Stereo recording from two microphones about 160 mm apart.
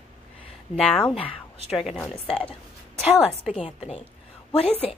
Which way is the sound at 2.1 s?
35° left (ahead or behind).